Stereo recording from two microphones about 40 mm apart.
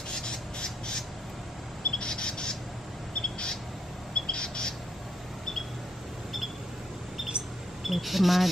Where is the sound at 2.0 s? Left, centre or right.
Left.